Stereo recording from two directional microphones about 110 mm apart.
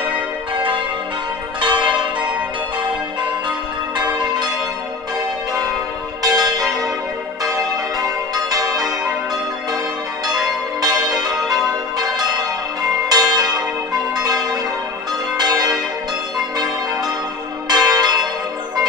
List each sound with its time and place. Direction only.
0.6 s change ringing: 50° right (ahead or behind)
3.9 s church bell: 40° right (ahead or behind)
6.2 s church bell: 35° right (ahead or behind)
8.5 s change ringing: 35° right (ahead or behind)
10.2 s change ringing: 35° right (ahead or behind)
13.1 s church bell: 35° right (ahead or behind)
14.1 s change ringing: 35° right (ahead or behind)
15.3 s church bell: 35° right (ahead or behind)
16.5 s change ringing: 35° right (ahead or behind)
17.6 s church bell: 35° right (ahead or behind)